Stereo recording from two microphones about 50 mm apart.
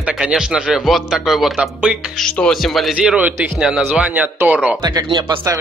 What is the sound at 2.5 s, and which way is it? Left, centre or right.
Speech, centre.